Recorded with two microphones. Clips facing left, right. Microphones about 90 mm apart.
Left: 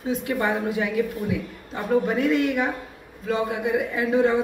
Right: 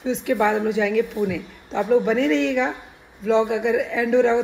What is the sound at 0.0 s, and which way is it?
A man's voice, 75° right (ahead or behind).